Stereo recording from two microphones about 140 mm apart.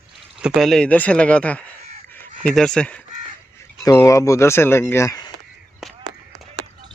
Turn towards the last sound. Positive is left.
turn(degrees=25)  # may be behind; listen again after turning